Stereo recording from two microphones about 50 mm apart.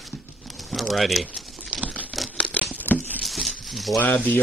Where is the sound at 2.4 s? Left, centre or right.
Left.